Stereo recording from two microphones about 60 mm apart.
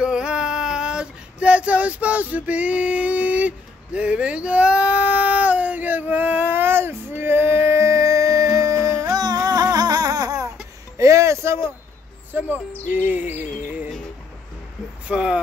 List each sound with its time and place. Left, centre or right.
0.0 s female singing: centre; by 10.5 s right
11.0 s a sound: right
12.3 s speech: right
15.0 s speech: centre